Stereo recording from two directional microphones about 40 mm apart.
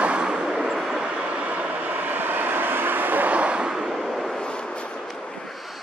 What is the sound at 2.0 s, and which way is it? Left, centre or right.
Vehicle, right.